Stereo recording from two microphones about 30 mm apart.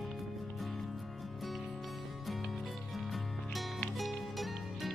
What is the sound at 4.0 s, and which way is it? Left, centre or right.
Music, centre.